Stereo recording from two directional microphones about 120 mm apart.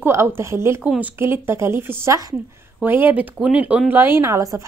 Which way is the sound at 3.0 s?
15° right (ahead or behind).